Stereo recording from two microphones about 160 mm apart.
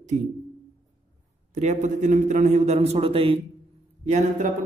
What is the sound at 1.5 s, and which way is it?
A man's voice, 45° right (ahead or behind).